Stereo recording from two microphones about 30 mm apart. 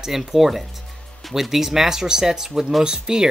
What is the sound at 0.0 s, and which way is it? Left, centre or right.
Speech, centre.